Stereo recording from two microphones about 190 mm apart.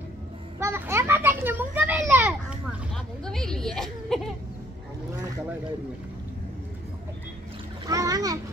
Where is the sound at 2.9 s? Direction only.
5° left (ahead or behind).